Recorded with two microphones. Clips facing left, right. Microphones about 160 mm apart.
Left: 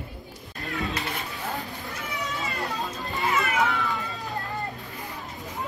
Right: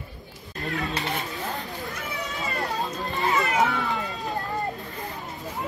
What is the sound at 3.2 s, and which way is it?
Cat, 40° right (ahead or behind).